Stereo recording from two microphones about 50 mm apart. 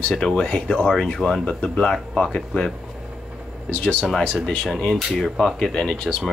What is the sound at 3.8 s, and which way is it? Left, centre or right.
Speech, left.